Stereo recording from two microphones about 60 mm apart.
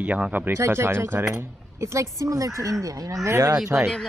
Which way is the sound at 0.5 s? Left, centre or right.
Right.